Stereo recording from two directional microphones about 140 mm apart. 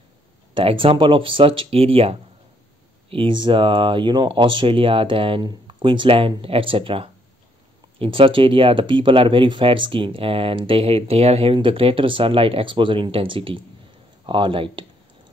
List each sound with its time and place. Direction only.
0.6 s speech: 40° right (ahead or behind)